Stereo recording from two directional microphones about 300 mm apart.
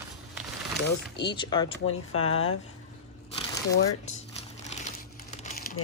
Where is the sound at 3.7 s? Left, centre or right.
Left.